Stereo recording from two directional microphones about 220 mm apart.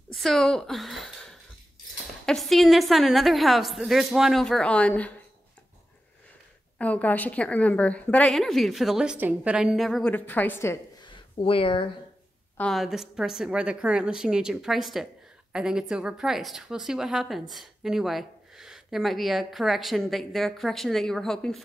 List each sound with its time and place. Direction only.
0.1 s a sound: centre (ahead or behind)
2.2 s a woman's voice: centre (ahead or behind)
6.8 s a woman's voice: 5° left (ahead or behind)
11.3 s speech: 25° left (ahead or behind)
12.5 s a woman's voice: centre (ahead or behind)